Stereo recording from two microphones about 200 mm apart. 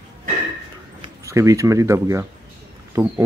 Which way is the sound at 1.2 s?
15° right (ahead or behind).